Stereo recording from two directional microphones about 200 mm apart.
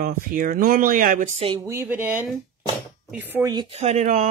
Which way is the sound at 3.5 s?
20° right (ahead or behind).